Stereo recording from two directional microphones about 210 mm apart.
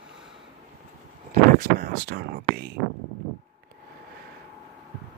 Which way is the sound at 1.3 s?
45° right (ahead or behind).